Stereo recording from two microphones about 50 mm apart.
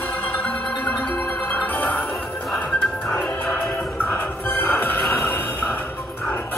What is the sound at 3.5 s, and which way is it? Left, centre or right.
Music, left.